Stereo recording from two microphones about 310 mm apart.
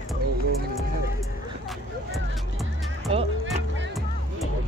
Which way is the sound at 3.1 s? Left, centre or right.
Centre.